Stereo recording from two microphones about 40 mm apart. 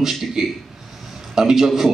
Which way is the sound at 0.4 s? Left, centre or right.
Centre.